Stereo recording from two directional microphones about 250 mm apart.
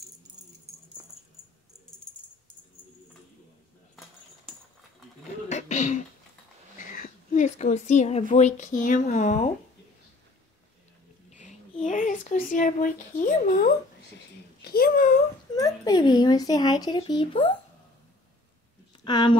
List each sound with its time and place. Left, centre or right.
5.5 s throat clearing: left
6.8 s a woman's voice: left
11.2 s a sound: left
11.8 s speech: left
14.6 s a sound: left
15.5 s speech: centre
19.0 s speech: centre